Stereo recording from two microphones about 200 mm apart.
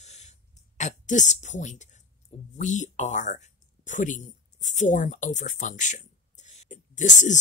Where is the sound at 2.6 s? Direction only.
35° left (ahead or behind).